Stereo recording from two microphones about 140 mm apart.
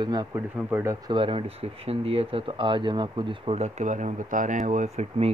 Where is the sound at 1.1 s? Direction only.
40° right (ahead or behind).